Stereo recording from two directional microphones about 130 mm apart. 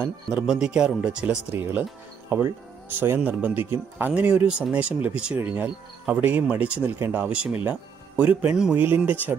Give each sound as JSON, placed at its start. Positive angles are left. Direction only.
{"t": 0.0, "sound": "speech", "side_deg": -10}